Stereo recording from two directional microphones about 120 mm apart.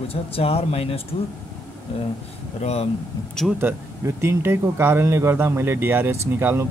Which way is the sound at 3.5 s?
20° right (ahead or behind).